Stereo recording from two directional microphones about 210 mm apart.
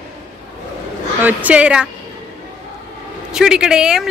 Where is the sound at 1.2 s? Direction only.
5° right (ahead or behind).